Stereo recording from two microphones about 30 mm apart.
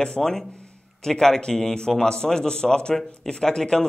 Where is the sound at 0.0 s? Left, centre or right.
Left.